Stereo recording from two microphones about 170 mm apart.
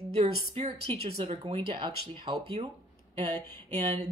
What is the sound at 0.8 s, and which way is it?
Speech, 35° right (ahead or behind).